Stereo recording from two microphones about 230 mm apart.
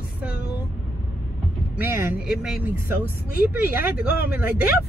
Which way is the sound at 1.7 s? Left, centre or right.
Centre.